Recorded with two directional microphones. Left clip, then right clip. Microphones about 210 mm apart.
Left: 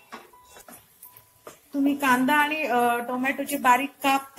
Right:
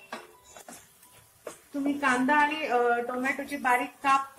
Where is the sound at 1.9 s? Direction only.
35° left (ahead or behind).